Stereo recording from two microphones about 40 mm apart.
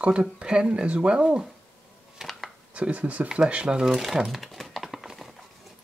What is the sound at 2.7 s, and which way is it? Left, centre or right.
Speech, right.